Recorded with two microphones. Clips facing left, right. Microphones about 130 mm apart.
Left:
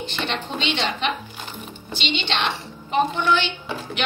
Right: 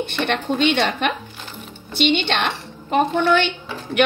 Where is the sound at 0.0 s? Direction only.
55° right (ahead or behind).